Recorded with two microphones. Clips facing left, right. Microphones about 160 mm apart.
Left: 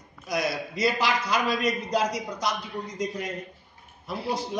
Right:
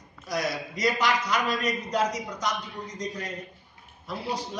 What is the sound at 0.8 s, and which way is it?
Speech, 10° left (ahead or behind).